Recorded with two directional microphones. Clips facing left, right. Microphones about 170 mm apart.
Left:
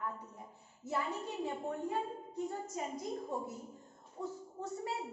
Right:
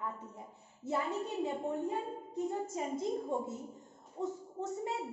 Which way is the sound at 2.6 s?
25° right (ahead or behind).